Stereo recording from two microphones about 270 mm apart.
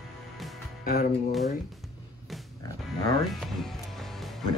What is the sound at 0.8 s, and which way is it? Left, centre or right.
Speech, left.